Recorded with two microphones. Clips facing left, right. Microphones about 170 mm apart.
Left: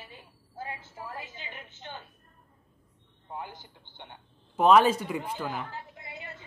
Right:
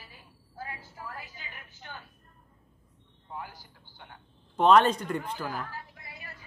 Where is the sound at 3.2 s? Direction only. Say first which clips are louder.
Left 2 dB; 20° left (ahead or behind).